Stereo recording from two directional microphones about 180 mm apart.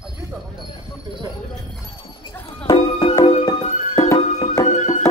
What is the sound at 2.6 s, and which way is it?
Music, 25° left (ahead or behind).